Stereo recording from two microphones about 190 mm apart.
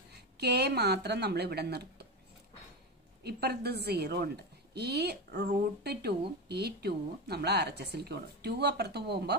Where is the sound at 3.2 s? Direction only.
55° right (ahead or behind).